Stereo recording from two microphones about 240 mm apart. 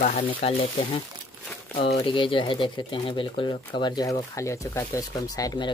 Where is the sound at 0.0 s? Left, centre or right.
Left.